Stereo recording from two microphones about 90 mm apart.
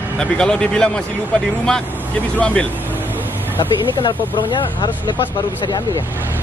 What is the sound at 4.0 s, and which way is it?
Speech, 60° left (ahead or behind).